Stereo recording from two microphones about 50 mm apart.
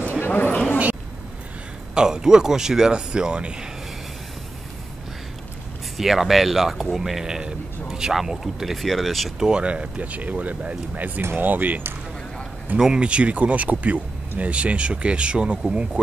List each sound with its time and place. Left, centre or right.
0.2 s a sound: left
2.0 s speech: centre
5.9 s a man's voice: centre
9.4 s speech: centre
11.3 s speech: right
12.7 s speech: centre